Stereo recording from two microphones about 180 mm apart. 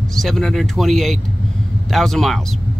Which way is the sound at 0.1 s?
Centre (ahead or behind).